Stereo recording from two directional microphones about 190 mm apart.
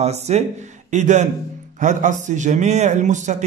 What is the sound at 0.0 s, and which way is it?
A man's voice, 35° right (ahead or behind).